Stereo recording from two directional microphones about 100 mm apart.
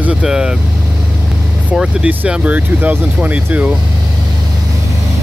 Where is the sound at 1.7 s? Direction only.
10° right (ahead or behind).